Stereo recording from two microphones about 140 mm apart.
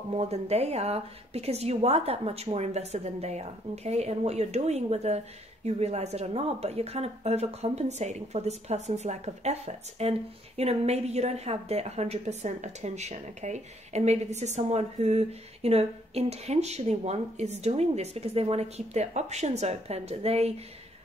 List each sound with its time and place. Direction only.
0.1 s speech: 50° right (ahead or behind)